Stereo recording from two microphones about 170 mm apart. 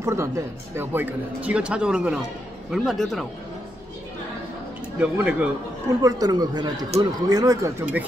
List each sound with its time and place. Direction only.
0.0 s speech: 15° right (ahead or behind); by 3.3 s centre (ahead or behind)
5.0 s speech: 10° right (ahead or behind)
6.0 s speech: 20° right (ahead or behind)